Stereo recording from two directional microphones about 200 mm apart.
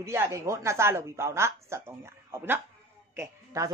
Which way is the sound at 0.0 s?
15° right (ahead or behind).